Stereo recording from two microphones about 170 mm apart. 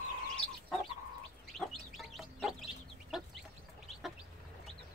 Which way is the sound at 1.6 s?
Centre (ahead or behind).